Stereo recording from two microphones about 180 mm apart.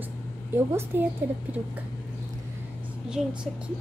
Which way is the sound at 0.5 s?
10° right (ahead or behind).